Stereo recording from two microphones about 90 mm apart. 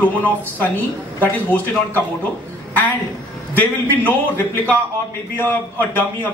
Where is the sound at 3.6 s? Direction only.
20° left (ahead or behind).